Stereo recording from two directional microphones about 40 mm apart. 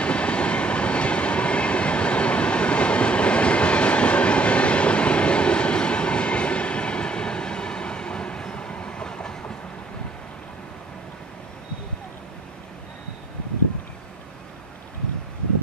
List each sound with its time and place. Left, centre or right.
0.0 s train: left